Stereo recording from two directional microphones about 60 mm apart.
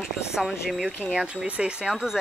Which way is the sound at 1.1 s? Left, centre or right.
Centre.